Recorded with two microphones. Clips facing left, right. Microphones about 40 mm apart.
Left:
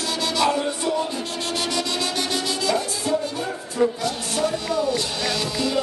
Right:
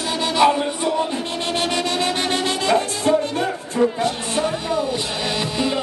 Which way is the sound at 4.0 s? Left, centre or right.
Right.